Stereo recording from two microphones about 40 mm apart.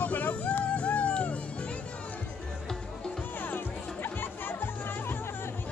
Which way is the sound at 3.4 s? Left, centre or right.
Left.